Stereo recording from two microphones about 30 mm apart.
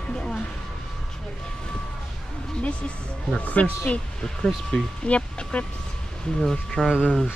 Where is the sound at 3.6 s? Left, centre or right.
Left.